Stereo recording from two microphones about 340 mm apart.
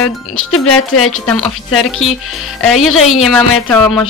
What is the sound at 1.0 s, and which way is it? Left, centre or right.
A woman's voice, centre.